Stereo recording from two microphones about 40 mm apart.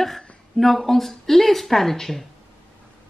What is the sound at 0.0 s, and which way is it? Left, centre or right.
A woman's voice, centre.